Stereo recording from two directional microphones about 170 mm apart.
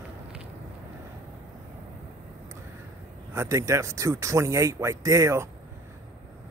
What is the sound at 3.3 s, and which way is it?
Speech, 15° right (ahead or behind).